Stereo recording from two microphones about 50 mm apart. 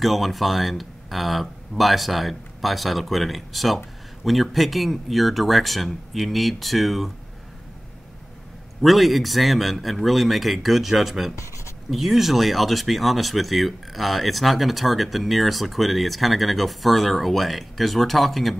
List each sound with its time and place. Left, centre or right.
0.0 s speech: centre
8.8 s speech: centre
11.3 s writing: left
11.9 s speech: centre